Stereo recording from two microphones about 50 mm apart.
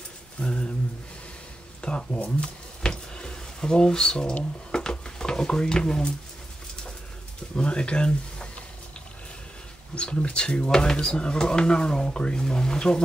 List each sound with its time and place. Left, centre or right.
0.4 s a sound: centre
1.8 s speech: centre
2.8 s a sound: centre
4.6 s stir: centre
7.5 s speech: left
9.9 s speech: left